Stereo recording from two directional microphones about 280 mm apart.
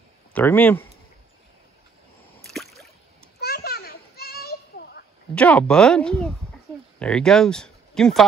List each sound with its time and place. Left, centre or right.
0.3 s speech: centre
2.4 s a sound: centre
3.3 s children playing: left
5.3 s speech: centre